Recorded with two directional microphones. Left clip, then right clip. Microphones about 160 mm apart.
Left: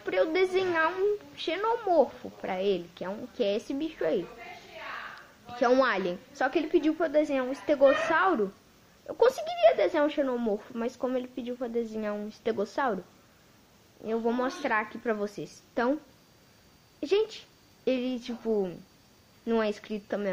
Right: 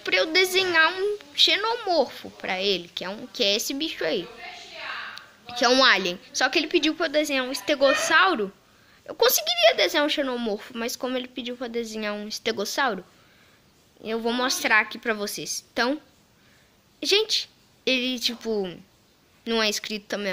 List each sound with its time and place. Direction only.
0.0 s a woman's voice: 10° right (ahead or behind)
5.6 s a woman's voice: 15° right (ahead or behind)
14.0 s a woman's voice: 20° right (ahead or behind)
17.0 s a woman's voice: 5° right (ahead or behind)